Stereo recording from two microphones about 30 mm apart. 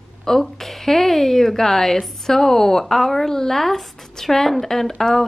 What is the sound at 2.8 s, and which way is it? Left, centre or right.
A woman's voice, centre.